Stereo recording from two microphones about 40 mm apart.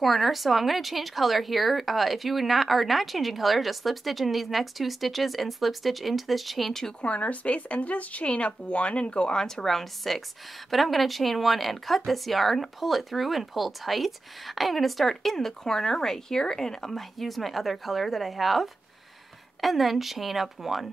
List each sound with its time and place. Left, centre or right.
0.0 s speech: centre
7.0 s speech: left
9.6 s speech: centre
17.2 s speech: centre